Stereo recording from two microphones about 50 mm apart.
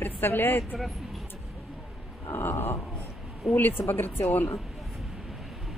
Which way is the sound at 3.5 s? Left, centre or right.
Left.